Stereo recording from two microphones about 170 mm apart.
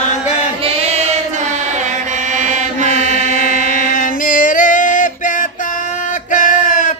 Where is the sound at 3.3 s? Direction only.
50° left (ahead or behind).